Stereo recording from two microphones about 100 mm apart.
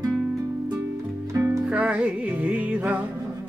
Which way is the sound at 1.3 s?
30° right (ahead or behind).